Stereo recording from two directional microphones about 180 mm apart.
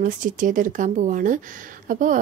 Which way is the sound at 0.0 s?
45° right (ahead or behind).